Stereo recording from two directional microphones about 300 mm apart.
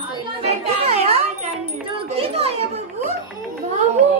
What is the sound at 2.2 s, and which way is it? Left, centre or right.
Children playing, centre.